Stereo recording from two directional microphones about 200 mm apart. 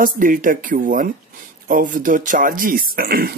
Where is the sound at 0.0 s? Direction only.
45° right (ahead or behind).